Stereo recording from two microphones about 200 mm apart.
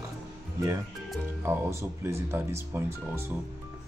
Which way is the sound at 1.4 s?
15° right (ahead or behind).